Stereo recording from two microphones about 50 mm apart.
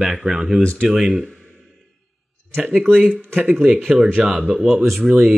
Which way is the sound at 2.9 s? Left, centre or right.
Centre.